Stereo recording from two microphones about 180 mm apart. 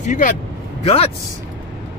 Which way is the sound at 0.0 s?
45° left (ahead or behind).